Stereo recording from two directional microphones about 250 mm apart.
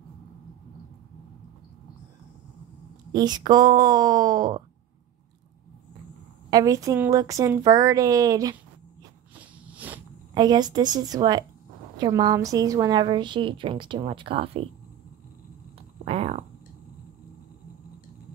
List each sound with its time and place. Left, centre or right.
3.1 s a woman's voice: centre
6.5 s a woman's voice: centre
9.3 s a sound: centre
12.0 s a woman's voice: centre
16.1 s a woman's voice: right